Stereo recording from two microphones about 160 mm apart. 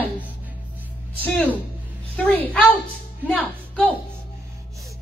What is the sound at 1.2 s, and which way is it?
A woman's voice, 10° left (ahead or behind).